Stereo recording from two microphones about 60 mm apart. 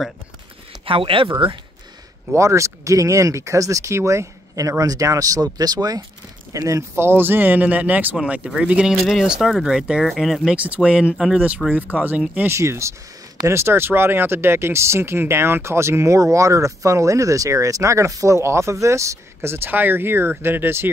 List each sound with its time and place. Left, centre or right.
0.7 s a sound: centre
2.3 s speech: right
6.5 s speech: right
7.0 s speech: right; by 8.9 s centre
9.0 s speech: centre
10.5 s speech: right
12.4 s speech: right
19.5 s speech: right